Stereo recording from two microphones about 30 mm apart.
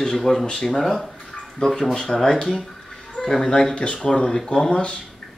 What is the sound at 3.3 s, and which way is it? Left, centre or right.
Speech, centre.